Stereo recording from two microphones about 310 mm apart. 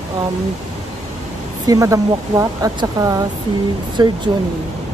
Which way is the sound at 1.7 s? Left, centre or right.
Centre.